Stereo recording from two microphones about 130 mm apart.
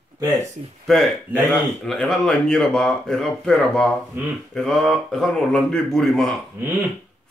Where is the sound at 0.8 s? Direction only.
5° left (ahead or behind).